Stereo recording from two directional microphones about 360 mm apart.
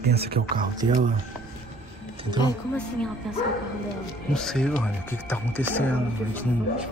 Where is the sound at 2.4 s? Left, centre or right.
Centre.